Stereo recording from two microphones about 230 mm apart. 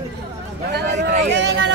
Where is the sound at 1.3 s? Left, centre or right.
Right.